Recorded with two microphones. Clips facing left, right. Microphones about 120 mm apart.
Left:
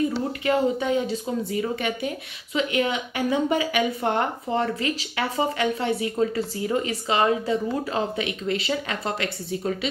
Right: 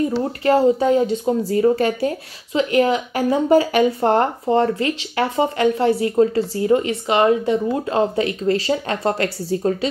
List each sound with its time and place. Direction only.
0.5 s speech: 35° right (ahead or behind)